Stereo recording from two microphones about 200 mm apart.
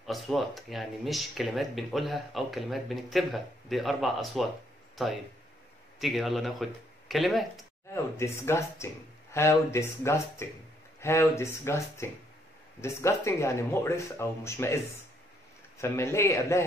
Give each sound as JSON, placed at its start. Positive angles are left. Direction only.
{"t": 0.0, "sound": "speech", "side_deg": 0}
{"t": 5.9, "sound": "speech", "side_deg": 0}
{"t": 7.9, "sound": "speech", "side_deg": 15}
{"t": 15.8, "sound": "speech", "side_deg": 15}